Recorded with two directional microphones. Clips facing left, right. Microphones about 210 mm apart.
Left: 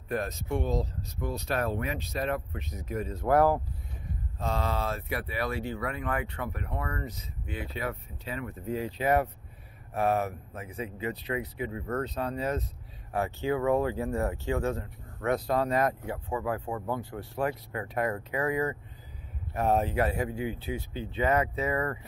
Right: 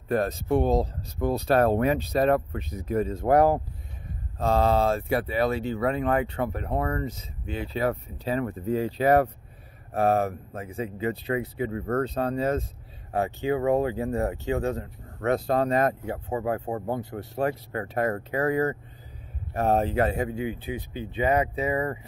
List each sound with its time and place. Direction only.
0.1 s speech: 30° right (ahead or behind)
3.3 s speech: 20° right (ahead or behind)
4.4 s speech: 35° right (ahead or behind)
11.7 s speech: 45° right (ahead or behind)
12.0 s speech: 30° right (ahead or behind)
13.1 s speech: 20° right (ahead or behind)
16.6 s speech: 40° right (ahead or behind)
18.4 s speech: 45° right (ahead or behind)
19.7 s speech: 30° right (ahead or behind); by 21.7 s 15° right (ahead or behind)